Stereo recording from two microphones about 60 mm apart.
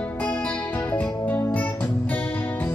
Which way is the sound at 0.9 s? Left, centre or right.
Left.